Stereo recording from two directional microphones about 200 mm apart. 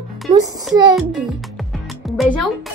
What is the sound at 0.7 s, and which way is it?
Speech, 20° right (ahead or behind).